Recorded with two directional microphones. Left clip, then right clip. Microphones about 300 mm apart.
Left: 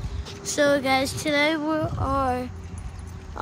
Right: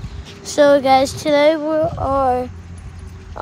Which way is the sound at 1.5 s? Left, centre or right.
Centre.